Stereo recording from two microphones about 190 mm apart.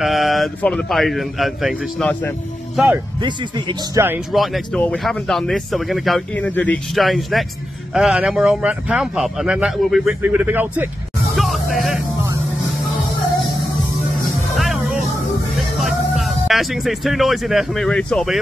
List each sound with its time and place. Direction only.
0.0 s speech: centre (ahead or behind)
3.2 s speech: 25° right (ahead or behind)
4.3 s speech: centre (ahead or behind)
11.3 s music: centre (ahead or behind)
14.6 s music: centre (ahead or behind)
15.8 s speech: centre (ahead or behind)